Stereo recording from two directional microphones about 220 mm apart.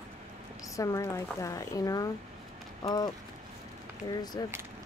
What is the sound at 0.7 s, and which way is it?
Speech, 15° left (ahead or behind).